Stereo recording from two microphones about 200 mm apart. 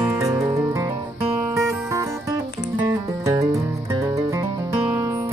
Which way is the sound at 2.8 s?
20° right (ahead or behind).